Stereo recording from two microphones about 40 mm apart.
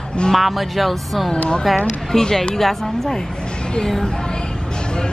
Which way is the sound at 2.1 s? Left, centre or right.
Centre.